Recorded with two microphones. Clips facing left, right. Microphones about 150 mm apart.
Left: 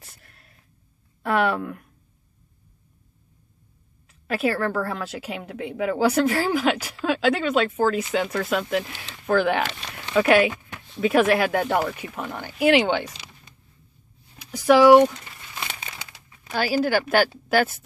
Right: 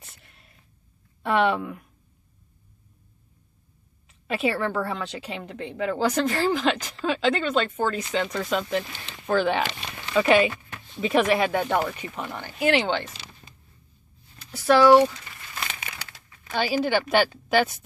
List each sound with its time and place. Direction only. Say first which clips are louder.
0.2 s a sound: left 1 dB; centre (ahead or behind)
1.2 s a woman's voice: even; 5° left (ahead or behind)
4.1 s a woman's voice: left 2 dB; centre (ahead or behind)
14.4 s speech: left 3 dB; 15° left (ahead or behind)
16.0 s crumpling: left 1 dB; 20° left (ahead or behind)
16.5 s a woman's voice: left 2 dB; 5° left (ahead or behind)